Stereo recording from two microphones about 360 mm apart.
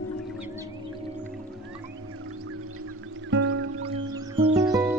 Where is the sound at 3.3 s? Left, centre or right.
Right.